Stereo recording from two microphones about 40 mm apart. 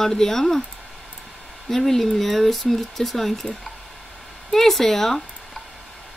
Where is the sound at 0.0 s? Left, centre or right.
Centre.